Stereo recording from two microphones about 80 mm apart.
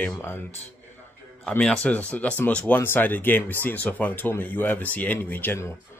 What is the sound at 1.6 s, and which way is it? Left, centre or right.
Speech, centre.